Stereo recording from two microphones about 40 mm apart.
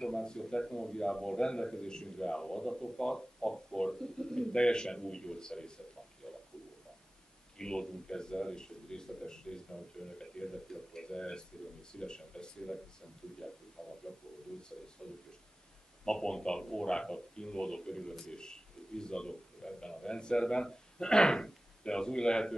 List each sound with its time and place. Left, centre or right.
0.0 s a man's voice: centre
6.3 s bird: centre
7.5 s a man's voice: centre
13.4 s a sound: centre
13.8 s bird: centre
14.5 s a sound: centre
15.0 s a man's voice: centre